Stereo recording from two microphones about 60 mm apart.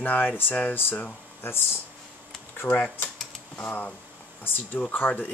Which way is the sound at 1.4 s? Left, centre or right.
Left.